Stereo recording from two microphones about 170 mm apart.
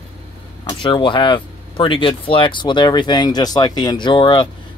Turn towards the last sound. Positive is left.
turn(degrees=30)  # may be behind; listen again after turning